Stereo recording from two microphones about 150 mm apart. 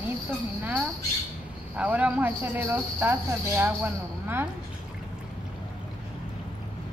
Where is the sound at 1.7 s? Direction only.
10° right (ahead or behind).